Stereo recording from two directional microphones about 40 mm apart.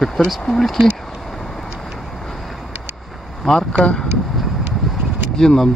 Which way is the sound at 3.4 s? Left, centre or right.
Centre.